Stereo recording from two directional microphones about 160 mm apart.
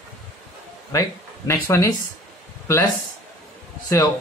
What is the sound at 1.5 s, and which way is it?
Speech, 15° left (ahead or behind).